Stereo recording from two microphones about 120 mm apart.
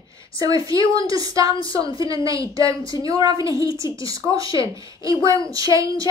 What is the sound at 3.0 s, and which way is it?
A woman's voice, 30° right (ahead or behind).